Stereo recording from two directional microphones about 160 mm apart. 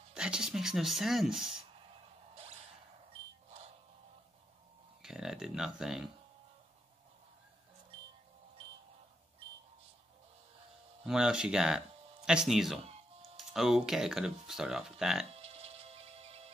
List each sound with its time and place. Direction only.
0.1 s speech: 5° right (ahead or behind)
5.0 s speech: 5° right (ahead or behind)
11.1 s speech: 5° right (ahead or behind)
15.3 s music: 40° right (ahead or behind)